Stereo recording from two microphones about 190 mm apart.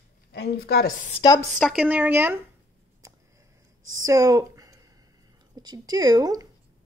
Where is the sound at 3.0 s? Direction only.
15° right (ahead or behind).